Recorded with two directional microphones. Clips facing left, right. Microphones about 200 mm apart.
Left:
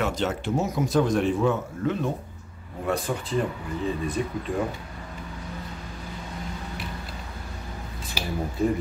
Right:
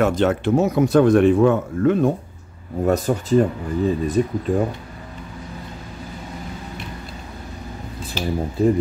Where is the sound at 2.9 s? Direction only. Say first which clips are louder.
Right 8 dB; 40° right (ahead or behind).